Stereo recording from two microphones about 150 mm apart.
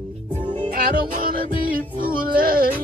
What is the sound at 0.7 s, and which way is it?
Music, 75° right (ahead or behind).